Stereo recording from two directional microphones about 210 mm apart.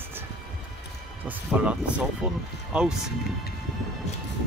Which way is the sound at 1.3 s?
5° right (ahead or behind).